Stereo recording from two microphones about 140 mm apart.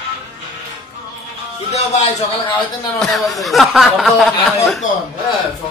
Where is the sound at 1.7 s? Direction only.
55° left (ahead or behind).